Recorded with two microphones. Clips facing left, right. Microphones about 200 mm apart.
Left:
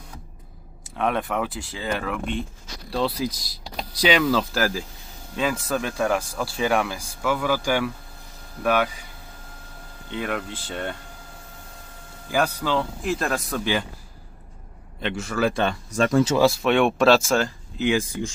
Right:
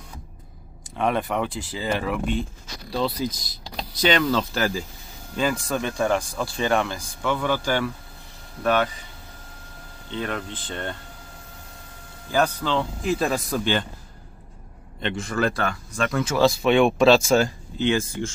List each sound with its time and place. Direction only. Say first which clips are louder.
0.9 s speech: right 1 dB; centre (ahead or behind)
10.1 s speech: left 1 dB; 10° left (ahead or behind)
12.3 s speech: right 1 dB; 10° left (ahead or behind)
15.0 s speech: even; 5° left (ahead or behind)
15.5 s speech: left 4 dB; 25° left (ahead or behind)
16.3 s speech: right 1 dB; 5° left (ahead or behind)